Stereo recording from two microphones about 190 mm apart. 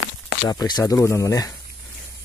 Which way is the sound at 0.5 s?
20° left (ahead or behind).